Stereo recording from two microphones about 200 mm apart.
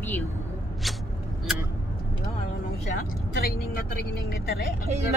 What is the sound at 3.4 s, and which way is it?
Speech, 50° left (ahead or behind).